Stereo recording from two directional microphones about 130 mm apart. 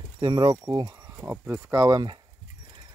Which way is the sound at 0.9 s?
25° right (ahead or behind).